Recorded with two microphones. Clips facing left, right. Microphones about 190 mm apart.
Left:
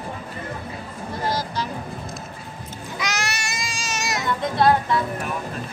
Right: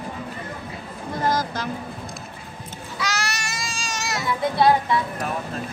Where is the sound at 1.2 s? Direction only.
50° right (ahead or behind).